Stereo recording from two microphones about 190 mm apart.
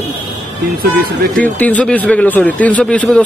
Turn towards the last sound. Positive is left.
turn(degrees=5)  # may be behind; listen again after turning